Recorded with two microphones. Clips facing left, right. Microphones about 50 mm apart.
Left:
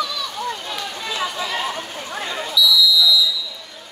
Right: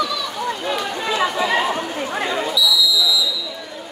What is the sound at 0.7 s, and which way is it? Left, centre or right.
Run, right.